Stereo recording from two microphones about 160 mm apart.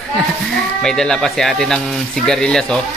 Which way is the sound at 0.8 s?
5° left (ahead or behind).